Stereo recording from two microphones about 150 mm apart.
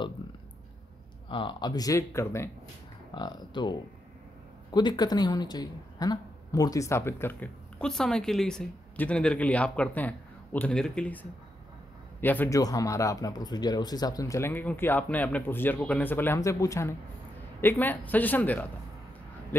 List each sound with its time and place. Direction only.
1.3 s speech: 35° left (ahead or behind)
3.2 s speech: 30° left (ahead or behind); by 11.1 s 5° left (ahead or behind)
12.2 s speech: 15° left (ahead or behind)
12.5 s speech: 25° left (ahead or behind)